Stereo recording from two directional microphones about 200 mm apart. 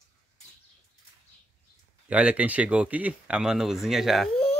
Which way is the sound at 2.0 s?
5° right (ahead or behind).